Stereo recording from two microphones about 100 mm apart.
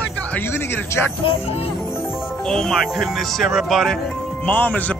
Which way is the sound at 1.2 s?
70° left (ahead or behind).